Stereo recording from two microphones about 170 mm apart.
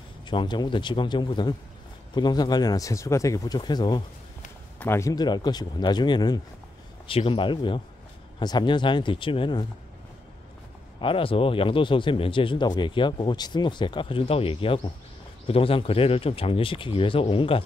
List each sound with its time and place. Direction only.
0.2 s speech: 30° left (ahead or behind)
4.7 s speech: 15° left (ahead or behind)
11.0 s speech: 30° left (ahead or behind)